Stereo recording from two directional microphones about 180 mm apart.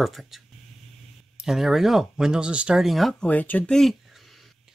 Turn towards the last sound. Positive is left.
turn(degrees=0)  # may be behind; listen again after turning